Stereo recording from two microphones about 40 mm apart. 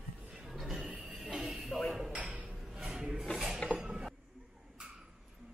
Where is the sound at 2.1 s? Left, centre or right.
Right.